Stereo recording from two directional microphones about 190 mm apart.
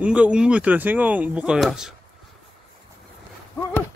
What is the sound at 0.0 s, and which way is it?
Speech, 5° right (ahead or behind).